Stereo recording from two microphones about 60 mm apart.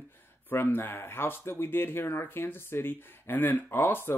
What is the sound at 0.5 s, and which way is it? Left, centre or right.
Speech, left.